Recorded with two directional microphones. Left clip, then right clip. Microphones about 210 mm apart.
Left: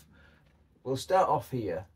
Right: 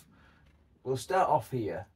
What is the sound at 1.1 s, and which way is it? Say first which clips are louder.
Speech: left 1 dB; centre (ahead or behind).